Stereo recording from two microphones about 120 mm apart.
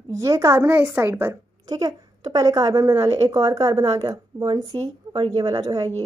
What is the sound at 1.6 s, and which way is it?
A woman's voice, 35° right (ahead or behind).